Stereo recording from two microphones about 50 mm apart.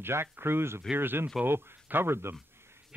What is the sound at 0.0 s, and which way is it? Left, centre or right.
Speech, right.